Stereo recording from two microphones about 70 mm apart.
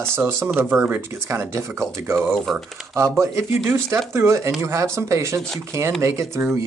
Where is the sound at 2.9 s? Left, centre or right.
Right.